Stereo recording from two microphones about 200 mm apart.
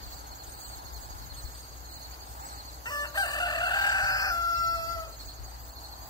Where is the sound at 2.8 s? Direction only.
20° left (ahead or behind).